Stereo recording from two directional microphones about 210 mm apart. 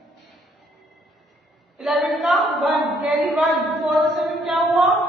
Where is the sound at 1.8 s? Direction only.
Centre (ahead or behind).